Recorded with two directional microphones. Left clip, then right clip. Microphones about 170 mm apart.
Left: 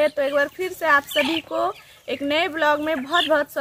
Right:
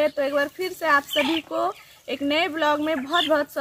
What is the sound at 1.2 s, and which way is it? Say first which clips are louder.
Speech: left 1 dB; 60° left (ahead or behind).